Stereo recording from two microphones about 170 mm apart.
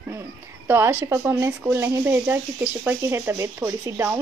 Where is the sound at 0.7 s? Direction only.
15° right (ahead or behind).